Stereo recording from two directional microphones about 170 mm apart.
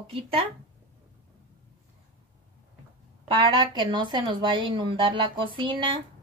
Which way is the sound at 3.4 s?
30° right (ahead or behind).